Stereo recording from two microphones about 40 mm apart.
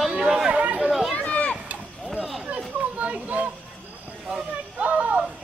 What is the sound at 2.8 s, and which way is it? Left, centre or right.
Children playing, right.